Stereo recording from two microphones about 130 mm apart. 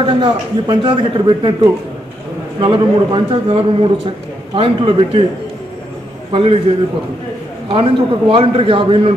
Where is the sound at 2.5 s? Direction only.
40° right (ahead or behind).